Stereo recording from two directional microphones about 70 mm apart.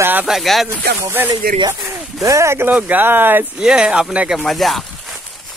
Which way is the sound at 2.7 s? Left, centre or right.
Right.